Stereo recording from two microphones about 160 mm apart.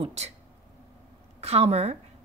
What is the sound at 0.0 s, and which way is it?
Speech, 40° right (ahead or behind).